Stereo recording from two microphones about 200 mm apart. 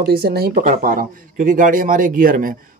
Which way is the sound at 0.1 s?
50° right (ahead or behind).